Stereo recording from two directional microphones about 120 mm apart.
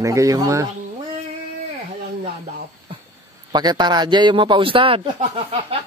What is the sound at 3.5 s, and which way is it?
A man's voice, 35° right (ahead or behind).